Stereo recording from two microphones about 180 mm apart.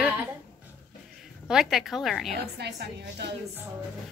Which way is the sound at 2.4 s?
65° right (ahead or behind).